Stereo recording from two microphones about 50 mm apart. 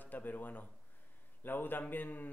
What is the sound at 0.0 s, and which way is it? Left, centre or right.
A man's voice, left.